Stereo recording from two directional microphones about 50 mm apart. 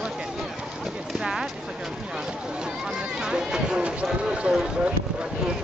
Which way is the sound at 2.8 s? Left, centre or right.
Centre.